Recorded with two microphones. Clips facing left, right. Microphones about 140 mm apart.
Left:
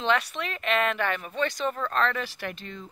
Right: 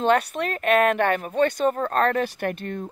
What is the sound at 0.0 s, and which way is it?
Speech, 50° right (ahead or behind).